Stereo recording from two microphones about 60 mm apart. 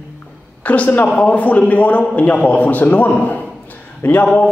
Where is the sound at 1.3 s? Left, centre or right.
Left.